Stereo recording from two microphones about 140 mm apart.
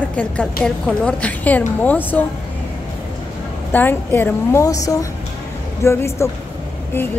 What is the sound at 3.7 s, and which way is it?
A woman's voice, 15° left (ahead or behind).